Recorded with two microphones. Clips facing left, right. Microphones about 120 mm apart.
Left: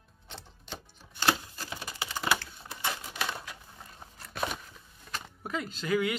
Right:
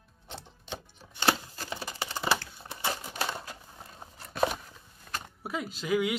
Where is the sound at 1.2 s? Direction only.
30° right (ahead or behind).